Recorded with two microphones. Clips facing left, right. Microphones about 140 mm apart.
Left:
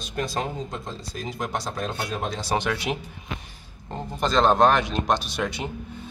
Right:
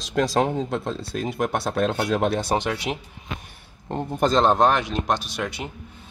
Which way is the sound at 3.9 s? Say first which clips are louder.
Right 5 dB; 50° right (ahead or behind).